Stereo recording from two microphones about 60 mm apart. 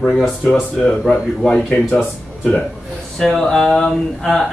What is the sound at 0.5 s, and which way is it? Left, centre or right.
Speech, centre.